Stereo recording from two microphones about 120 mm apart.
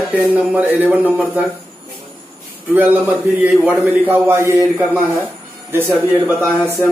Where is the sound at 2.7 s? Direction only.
15° right (ahead or behind).